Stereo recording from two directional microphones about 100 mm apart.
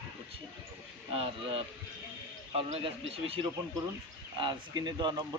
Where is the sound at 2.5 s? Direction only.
85° right.